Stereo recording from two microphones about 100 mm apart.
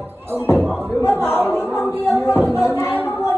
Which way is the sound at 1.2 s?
20° left (ahead or behind).